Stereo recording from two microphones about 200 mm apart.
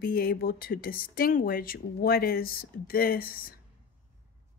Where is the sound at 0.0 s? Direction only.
50° left (ahead or behind).